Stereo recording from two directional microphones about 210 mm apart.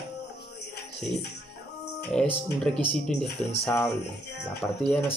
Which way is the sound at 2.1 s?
5° left (ahead or behind).